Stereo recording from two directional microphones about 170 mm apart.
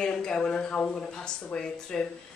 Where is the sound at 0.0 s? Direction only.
5° left (ahead or behind).